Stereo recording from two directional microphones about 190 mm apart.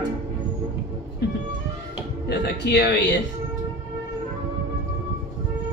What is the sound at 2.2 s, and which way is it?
Speech, 65° left (ahead or behind).